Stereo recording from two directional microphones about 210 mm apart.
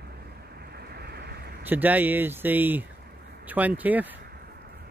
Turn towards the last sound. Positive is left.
turn(degrees=-10)  # may be behind; listen again after turning